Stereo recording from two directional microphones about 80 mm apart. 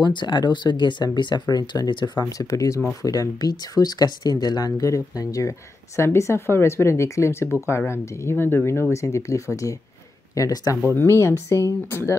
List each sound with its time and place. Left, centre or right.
0.0 s speech: left
1.9 s speech: left
2.2 s speech: left
5.9 s speech: left
11.0 s speech: left